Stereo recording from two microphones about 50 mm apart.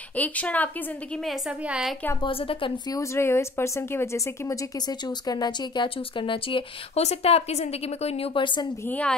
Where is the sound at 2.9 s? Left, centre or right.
Left.